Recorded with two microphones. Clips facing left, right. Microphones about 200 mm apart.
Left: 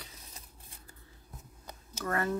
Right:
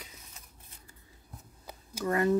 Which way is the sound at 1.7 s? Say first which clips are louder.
Right 4 dB; 15° right (ahead or behind).